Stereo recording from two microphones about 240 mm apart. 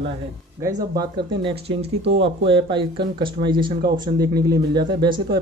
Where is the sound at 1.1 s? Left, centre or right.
Right.